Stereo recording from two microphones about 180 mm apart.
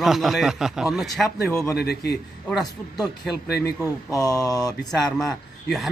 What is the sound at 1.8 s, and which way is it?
Speech, 65° left (ahead or behind).